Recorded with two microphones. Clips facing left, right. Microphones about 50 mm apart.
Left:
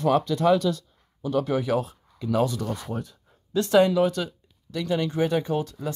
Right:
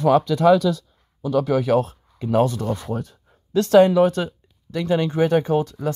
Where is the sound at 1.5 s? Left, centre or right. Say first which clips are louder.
Right 6 dB; right.